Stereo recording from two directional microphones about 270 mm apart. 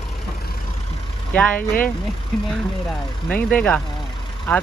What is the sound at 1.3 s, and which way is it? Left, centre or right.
Speech, centre.